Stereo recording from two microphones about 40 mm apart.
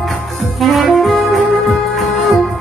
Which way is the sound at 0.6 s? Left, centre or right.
Centre.